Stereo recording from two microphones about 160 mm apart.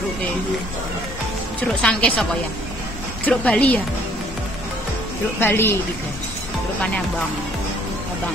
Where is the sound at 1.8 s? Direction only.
10° left (ahead or behind).